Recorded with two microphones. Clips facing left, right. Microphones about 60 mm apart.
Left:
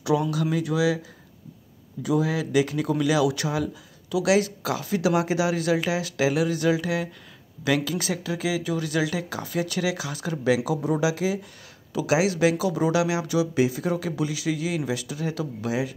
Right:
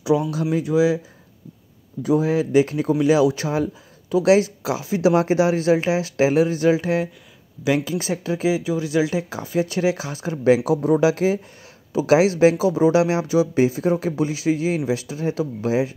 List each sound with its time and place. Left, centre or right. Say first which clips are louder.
0.0 s speech: right 3 dB; right
2.0 s speech: right 5 dB; right